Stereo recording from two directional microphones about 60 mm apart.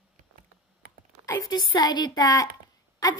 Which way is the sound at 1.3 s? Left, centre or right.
Left.